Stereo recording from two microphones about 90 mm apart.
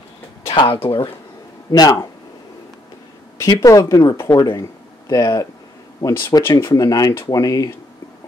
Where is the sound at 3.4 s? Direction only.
40° left (ahead or behind).